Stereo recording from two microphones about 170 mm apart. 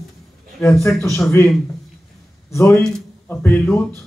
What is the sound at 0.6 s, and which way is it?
Speech, 15° left (ahead or behind).